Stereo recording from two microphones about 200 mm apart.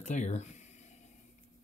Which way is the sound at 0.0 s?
35° left (ahead or behind).